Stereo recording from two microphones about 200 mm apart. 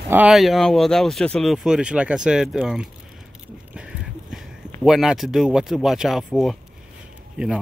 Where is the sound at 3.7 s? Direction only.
5° right (ahead or behind).